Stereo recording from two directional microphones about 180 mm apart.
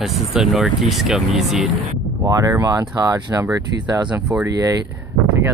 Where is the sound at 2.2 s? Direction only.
20° right (ahead or behind).